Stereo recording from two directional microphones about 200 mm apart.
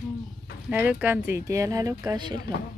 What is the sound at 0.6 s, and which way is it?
Speech, 10° right (ahead or behind).